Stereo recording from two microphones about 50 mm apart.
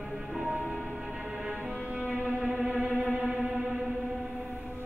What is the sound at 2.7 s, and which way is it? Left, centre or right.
Music, right.